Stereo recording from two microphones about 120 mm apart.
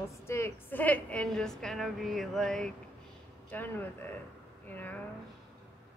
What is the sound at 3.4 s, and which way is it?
Speech, 15° left (ahead or behind).